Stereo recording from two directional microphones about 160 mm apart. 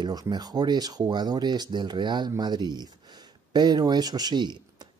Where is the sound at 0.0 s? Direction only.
25° right (ahead or behind).